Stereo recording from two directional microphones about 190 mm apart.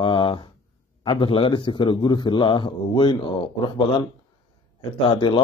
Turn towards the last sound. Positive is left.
turn(degrees=25)  # may be behind; listen again after turning